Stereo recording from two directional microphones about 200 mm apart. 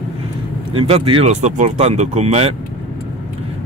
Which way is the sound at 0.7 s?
30° right (ahead or behind).